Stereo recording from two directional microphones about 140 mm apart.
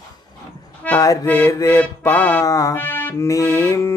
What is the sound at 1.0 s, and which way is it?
Music, 20° left (ahead or behind).